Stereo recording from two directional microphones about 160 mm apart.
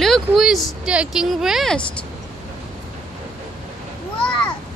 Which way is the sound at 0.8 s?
5° right (ahead or behind).